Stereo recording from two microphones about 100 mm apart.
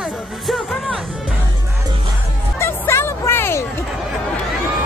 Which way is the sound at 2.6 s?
25° left (ahead or behind).